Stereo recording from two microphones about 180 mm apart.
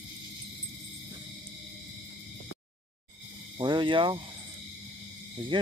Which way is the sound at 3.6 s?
25° right (ahead or behind).